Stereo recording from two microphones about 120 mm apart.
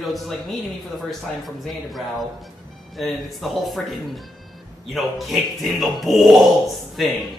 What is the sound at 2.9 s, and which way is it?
Speech, centre (ahead or behind).